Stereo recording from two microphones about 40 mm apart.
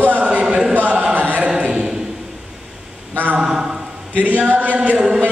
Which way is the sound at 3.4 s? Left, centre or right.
Centre.